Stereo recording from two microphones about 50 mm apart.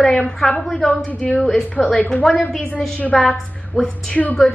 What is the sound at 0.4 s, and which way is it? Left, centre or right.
Speech, centre.